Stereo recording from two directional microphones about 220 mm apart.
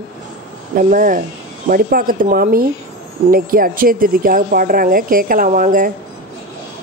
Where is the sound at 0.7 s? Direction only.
40° right (ahead or behind).